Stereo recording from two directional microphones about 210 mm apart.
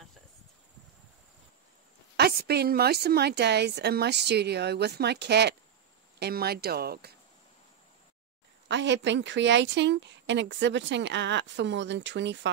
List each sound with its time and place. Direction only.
2.1 s a woman's voice: 50° right (ahead or behind)
8.6 s a woman's voice: 60° right (ahead or behind)